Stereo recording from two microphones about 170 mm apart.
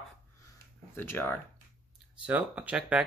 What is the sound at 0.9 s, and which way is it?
Speech, 15° left (ahead or behind).